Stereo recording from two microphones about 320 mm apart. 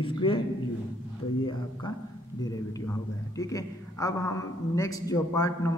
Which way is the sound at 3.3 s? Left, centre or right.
Centre.